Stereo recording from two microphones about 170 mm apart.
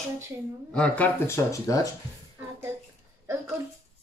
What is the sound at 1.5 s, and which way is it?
Speech, 20° left (ahead or behind).